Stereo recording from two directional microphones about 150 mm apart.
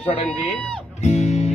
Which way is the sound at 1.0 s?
50° left (ahead or behind).